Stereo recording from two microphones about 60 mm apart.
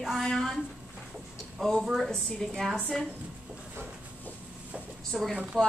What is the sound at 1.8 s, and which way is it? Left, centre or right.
Speech, centre.